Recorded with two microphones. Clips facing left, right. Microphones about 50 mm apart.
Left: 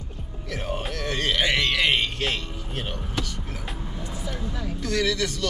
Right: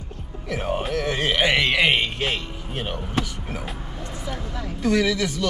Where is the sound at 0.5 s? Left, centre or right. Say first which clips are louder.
Right 5 dB; centre.